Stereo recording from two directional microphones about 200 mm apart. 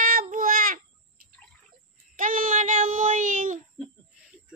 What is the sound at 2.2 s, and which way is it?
Child singing, 40° right (ahead or behind).